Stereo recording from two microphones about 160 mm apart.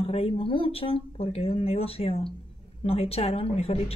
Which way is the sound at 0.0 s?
35° left (ahead or behind).